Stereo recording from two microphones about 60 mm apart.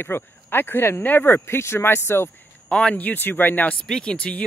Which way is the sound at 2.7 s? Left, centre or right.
Centre.